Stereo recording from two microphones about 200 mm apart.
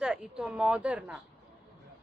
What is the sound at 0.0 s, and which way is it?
A woman's voice, 5° right (ahead or behind).